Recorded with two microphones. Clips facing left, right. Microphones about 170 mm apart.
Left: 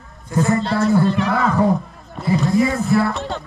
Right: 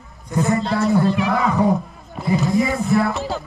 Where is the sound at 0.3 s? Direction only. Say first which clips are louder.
Left 1 dB; centre (ahead or behind).